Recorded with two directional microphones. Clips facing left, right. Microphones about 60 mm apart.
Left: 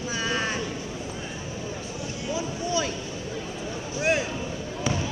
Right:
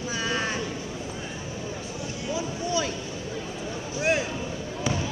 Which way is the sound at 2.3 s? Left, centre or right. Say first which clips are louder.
Even; left.